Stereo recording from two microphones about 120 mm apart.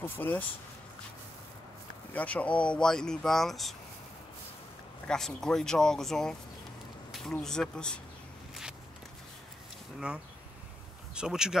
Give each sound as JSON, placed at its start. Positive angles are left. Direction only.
{"t": 0.0, "sound": "speech", "side_deg": 15}
{"t": 2.1, "sound": "speech", "side_deg": 10}
{"t": 5.0, "sound": "speech", "side_deg": 5}
{"t": 9.9, "sound": "speech", "side_deg": -10}